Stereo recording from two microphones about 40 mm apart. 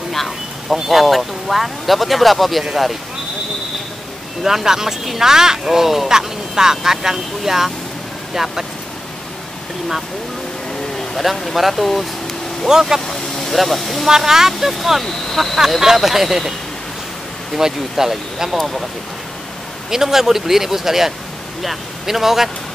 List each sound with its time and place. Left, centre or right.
0.1 s a sound: centre
0.8 s speech: centre
4.4 s speech: centre
11.5 s speech: centre
12.6 s speech: centre
13.0 s speech: centre
14.0 s speech: centre
15.6 s speech: centre
17.6 s speech: centre
19.9 s speech: centre